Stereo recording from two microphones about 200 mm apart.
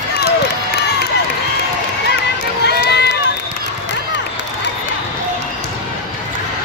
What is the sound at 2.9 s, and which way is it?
Run, 55° left (ahead or behind).